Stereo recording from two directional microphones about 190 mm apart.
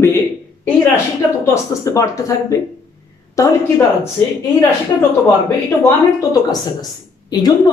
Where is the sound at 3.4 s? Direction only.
15° left (ahead or behind).